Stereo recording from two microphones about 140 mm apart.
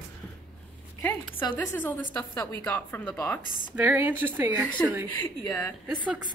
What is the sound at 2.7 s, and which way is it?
Speech, 15° left (ahead or behind).